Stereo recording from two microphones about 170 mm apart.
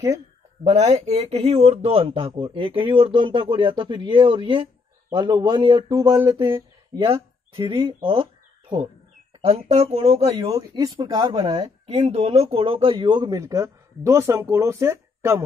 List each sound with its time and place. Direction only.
0.7 s speech: 40° right (ahead or behind); by 6.1 s 25° right (ahead or behind)
7.5 s speech: 30° right (ahead or behind)
10.5 s speech: 25° right (ahead or behind)
12.0 s speech: 40° right (ahead or behind); by 15.4 s 15° right (ahead or behind)